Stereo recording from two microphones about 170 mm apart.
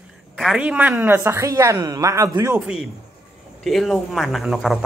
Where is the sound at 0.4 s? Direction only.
5° right (ahead or behind).